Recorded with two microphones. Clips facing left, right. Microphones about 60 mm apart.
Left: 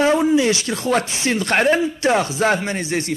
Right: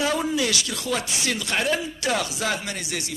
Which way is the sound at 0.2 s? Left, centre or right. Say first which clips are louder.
Left 8 dB; left.